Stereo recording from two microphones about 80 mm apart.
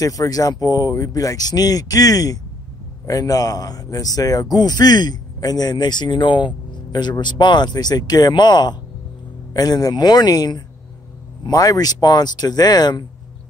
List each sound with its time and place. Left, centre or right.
0.0 s speech: left
9.5 s speech: left